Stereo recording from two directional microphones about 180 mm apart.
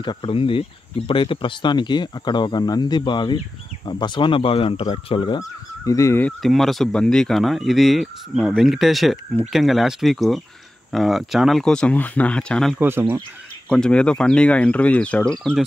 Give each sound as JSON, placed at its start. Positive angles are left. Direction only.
{"t": 0.0, "sound": "speech", "side_deg": 30}
{"t": 6.4, "sound": "speech", "side_deg": 0}
{"t": 12.7, "sound": "speech", "side_deg": -10}
{"t": 13.7, "sound": "speech", "side_deg": 5}